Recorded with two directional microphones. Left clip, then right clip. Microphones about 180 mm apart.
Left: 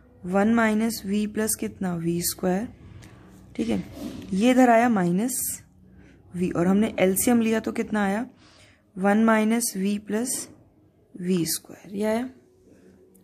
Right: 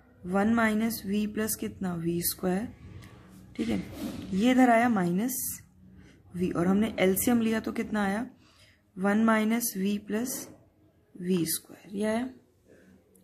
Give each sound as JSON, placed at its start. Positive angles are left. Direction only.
{"t": 0.3, "sound": "speech", "side_deg": 30}
{"t": 6.3, "sound": "speech", "side_deg": 30}